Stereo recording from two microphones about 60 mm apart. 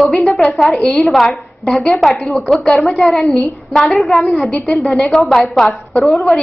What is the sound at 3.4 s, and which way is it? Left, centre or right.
A woman's voice, centre.